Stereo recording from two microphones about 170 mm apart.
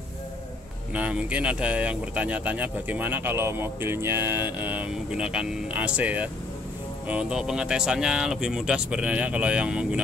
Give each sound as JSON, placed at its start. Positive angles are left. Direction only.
{"t": 0.9, "sound": "speech", "side_deg": -10}